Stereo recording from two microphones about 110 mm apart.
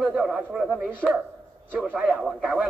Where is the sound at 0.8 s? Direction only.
15° right (ahead or behind).